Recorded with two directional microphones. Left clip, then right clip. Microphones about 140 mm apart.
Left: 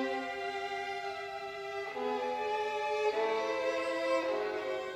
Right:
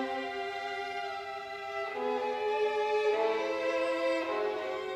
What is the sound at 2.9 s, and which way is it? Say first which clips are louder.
Music: right 3 dB; 30° left (ahead or behind).